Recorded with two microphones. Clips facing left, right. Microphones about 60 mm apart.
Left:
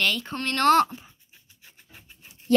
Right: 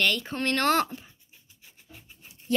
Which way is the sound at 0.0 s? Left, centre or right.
Centre.